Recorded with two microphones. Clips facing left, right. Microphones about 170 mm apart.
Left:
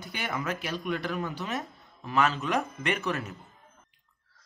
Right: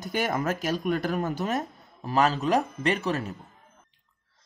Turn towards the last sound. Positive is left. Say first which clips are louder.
# right 4 dB
turn(degrees=-35)  # may be behind; listen again after turning